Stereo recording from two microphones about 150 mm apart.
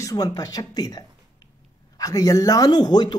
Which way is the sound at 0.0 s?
25° left (ahead or behind).